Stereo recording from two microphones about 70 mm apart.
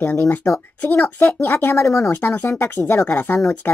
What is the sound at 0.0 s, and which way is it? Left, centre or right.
Speech, left.